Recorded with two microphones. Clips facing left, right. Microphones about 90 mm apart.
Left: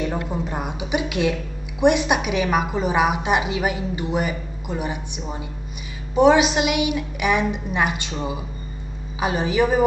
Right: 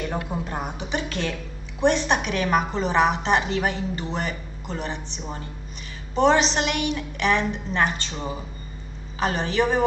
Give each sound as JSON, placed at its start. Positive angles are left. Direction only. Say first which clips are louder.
{"t": 0.0, "sound": "a woman's voice", "louder": "left 3 dB", "side_deg": 5}